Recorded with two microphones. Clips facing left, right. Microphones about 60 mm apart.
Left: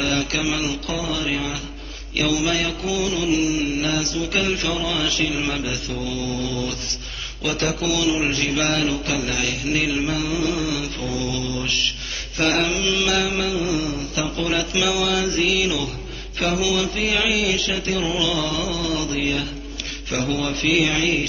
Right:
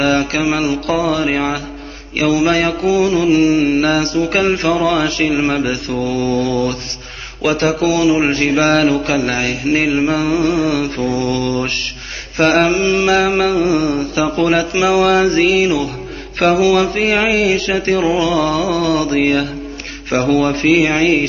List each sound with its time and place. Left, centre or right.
0.0 s mantra: right
16.3 s mantra: right
21.0 s mantra: right